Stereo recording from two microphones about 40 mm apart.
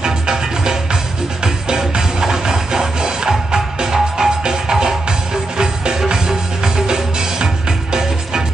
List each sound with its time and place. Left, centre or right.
0.0 s music: centre